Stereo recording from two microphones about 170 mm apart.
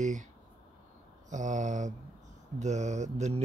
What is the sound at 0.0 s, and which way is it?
Speech, 45° right (ahead or behind).